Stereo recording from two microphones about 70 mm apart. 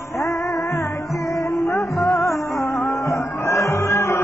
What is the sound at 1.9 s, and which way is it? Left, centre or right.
Music, left.